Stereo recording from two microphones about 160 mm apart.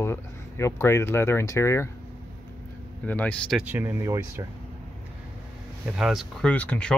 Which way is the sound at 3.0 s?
10° left (ahead or behind).